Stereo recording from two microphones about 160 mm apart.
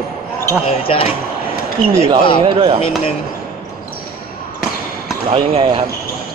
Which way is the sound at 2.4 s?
30° right (ahead or behind).